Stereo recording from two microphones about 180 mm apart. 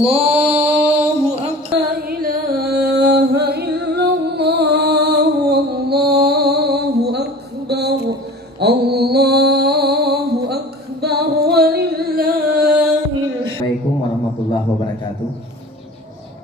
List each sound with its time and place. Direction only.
0.0 s mantra: 35° right (ahead or behind)
1.9 s music: 55° right (ahead or behind)
8.5 s mantra: 65° right (ahead or behind)